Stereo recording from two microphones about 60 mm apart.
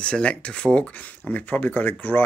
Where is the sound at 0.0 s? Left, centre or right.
Centre.